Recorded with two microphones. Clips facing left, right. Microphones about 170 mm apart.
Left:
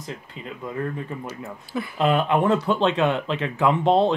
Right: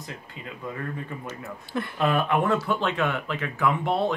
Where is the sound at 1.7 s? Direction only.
Centre (ahead or behind).